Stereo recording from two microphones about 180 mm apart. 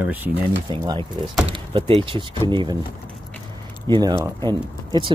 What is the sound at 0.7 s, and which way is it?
Speech, 25° right (ahead or behind).